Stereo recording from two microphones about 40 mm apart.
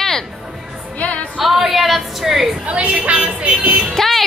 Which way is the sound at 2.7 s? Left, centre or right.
Right.